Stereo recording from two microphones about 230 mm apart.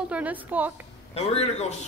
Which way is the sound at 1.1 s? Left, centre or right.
Left.